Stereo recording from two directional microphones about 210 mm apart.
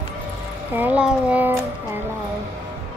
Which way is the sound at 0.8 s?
5° right (ahead or behind).